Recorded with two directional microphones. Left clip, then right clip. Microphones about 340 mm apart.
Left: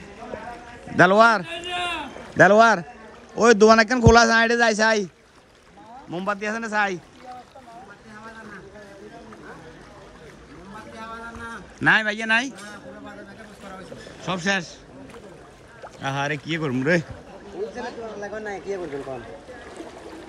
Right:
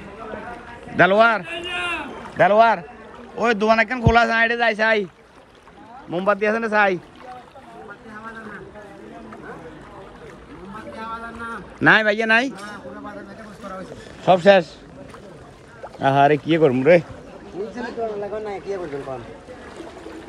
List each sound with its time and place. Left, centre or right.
0.9 s speech: centre
1.5 s rowboat: left
3.3 s a man's voice: left
6.0 s speech: centre
11.0 s boat: centre
14.2 s speech: centre
16.0 s speech: centre
17.8 s a man's voice: left